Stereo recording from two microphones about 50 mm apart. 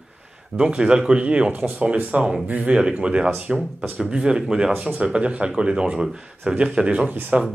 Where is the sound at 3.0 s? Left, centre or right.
Right.